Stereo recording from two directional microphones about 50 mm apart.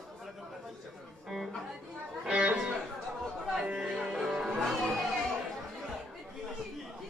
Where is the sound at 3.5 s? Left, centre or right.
Centre.